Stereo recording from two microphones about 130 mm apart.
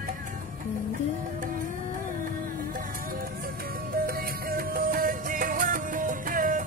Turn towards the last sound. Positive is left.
turn(degrees=-90)